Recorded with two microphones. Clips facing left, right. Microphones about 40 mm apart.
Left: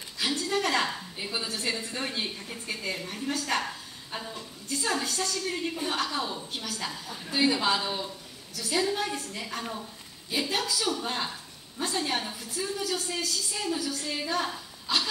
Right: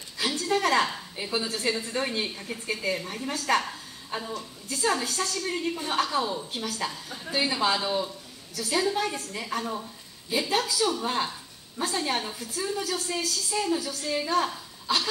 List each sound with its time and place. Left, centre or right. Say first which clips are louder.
0.2 s a sound: right 1 dB; centre
0.5 s a woman's voice: right 5 dB; centre
4.4 s a woman's voice: right 3 dB; centre